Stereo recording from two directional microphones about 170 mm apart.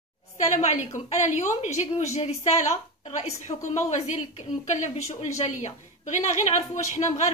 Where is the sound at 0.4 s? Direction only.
40° left (ahead or behind).